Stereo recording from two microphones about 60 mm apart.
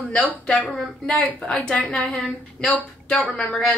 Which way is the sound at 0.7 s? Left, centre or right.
Centre.